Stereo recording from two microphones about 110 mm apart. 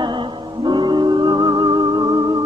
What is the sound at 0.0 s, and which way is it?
Music, 45° right (ahead or behind).